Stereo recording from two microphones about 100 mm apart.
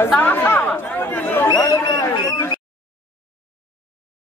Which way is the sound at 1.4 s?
35° left (ahead or behind).